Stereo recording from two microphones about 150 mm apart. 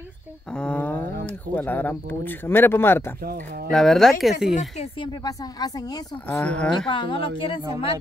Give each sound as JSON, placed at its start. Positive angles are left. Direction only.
{"t": 0.5, "sound": "a sound", "side_deg": 5}
{"t": 1.2, "sound": "speech", "side_deg": 10}
{"t": 3.7, "sound": "speech", "side_deg": 0}
{"t": 5.0, "sound": "speech", "side_deg": 25}
{"t": 6.2, "sound": "speech", "side_deg": 10}
{"t": 6.9, "sound": "a woman's voice", "side_deg": 35}